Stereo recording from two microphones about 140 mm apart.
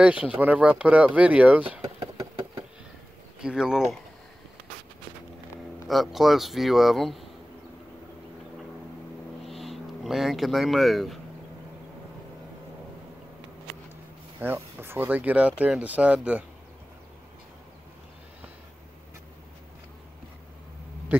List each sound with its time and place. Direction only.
0.0 s speech: 10° right (ahead or behind)
2.0 s engine: 25° right (ahead or behind)
3.3 s speech: 5° right (ahead or behind)
5.9 s speech: centre (ahead or behind)
9.5 s speech: centre (ahead or behind)
14.4 s speech: 15° right (ahead or behind)
21.1 s speech: 10° right (ahead or behind)